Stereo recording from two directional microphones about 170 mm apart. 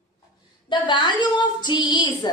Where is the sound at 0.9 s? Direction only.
25° left (ahead or behind).